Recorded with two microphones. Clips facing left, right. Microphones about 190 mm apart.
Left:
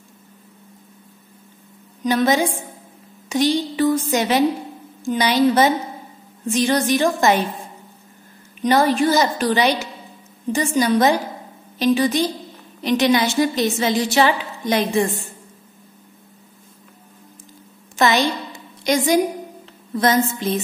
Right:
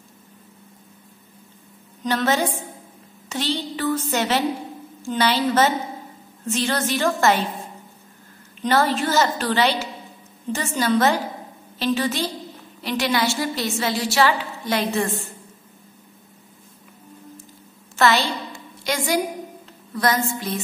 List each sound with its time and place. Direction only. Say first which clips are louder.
2.0 s a woman's voice: left 4 dB; 15° left (ahead or behind)
8.5 s a woman's voice: left 4 dB; 15° left (ahead or behind)
17.9 s a sound: left 2 dB; 15° left (ahead or behind)
20.0 s a woman's voice: left 4 dB; 20° left (ahead or behind)